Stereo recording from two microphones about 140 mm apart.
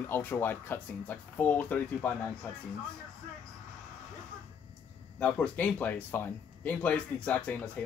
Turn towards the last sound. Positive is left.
turn(degrees=10)  # may be behind; listen again after turning